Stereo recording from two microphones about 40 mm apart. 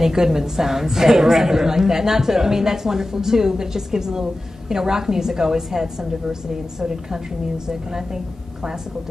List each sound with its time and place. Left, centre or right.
0.0 s a woman's voice: centre